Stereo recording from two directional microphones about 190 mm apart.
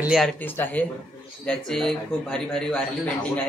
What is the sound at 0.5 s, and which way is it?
A man's voice, 10° left (ahead or behind).